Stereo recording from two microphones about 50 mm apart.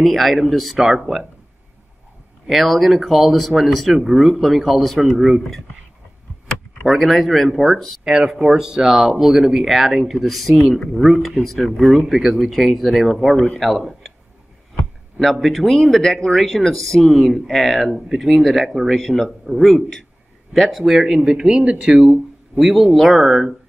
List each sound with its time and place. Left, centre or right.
0.0 s speech: centre
2.4 s speech: centre
6.9 s speech: centre
8.0 s speech: centre
15.3 s a man's voice: centre
21.0 s speech: centre
22.6 s speech: centre